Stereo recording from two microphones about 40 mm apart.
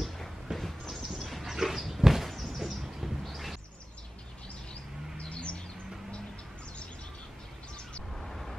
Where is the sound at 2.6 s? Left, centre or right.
Centre.